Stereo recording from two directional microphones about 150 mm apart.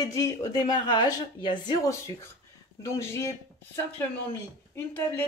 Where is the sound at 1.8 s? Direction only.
20° left (ahead or behind).